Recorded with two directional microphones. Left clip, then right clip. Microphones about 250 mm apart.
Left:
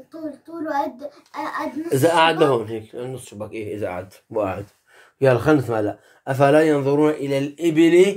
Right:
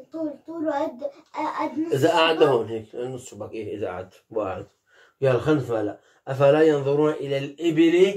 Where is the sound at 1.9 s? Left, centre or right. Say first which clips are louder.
Left 4 dB; left.